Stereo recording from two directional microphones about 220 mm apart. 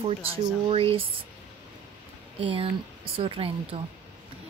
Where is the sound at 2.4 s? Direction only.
25° right (ahead or behind).